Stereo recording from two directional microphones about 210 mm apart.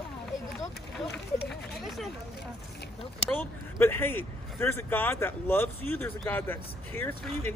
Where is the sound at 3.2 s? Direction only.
10° left (ahead or behind).